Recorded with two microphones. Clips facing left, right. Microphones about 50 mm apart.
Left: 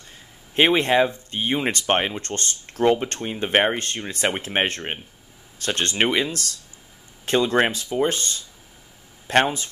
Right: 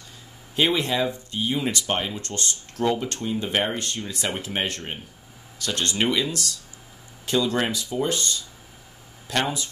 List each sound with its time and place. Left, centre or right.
0.6 s speech: left